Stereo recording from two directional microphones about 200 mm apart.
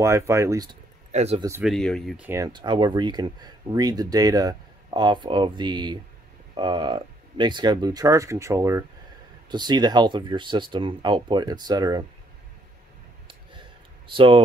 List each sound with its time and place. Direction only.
0.0 s speech: 15° right (ahead or behind)
1.1 s speech: 30° right (ahead or behind)
1.6 s speech: centre (ahead or behind); by 12.0 s 20° right (ahead or behind)
13.3 s clicking: 25° right (ahead or behind)